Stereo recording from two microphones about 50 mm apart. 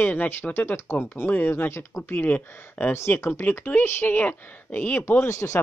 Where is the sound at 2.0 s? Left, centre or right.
Left.